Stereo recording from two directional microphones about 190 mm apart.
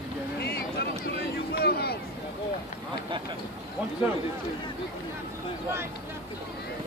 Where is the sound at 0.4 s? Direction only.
60° left (ahead or behind).